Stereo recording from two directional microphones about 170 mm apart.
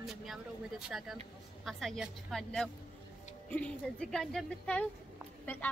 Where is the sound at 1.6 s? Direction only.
Centre (ahead or behind).